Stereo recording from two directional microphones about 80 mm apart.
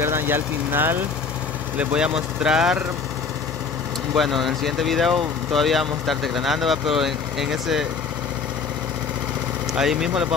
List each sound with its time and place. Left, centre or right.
0.0 s speech: right; by 2.8 s centre
4.1 s speech: centre
9.8 s speech: centre